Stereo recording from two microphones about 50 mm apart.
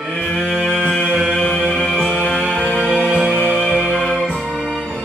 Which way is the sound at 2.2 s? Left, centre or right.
Centre.